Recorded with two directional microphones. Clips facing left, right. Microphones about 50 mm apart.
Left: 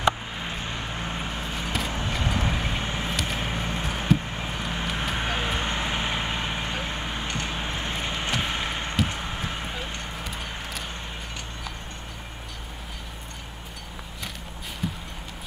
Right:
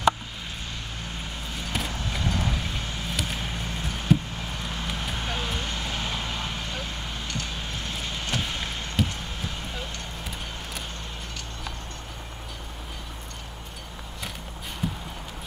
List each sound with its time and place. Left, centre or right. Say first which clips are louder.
0.0 s a sound: right 1 dB; left
1.9 s clip-clop: left 3 dB; left
2.3 s vehicle: left 2 dB; left
3.3 s music: left 4 dB; left
4.4 s vehicle: left 3 dB; left
9.0 s a sound: left 2 dB; left
14.8 s clip-clop: right 1 dB; centre